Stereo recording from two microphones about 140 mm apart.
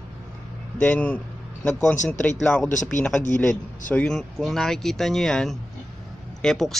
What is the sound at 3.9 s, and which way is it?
Speech, 10° left (ahead or behind).